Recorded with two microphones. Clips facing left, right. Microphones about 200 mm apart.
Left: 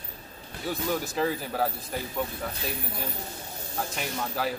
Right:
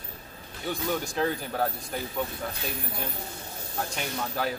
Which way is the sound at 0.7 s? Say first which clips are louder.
Even; 5° left (ahead or behind).